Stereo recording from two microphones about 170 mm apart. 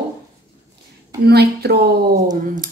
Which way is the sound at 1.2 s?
70° right (ahead or behind).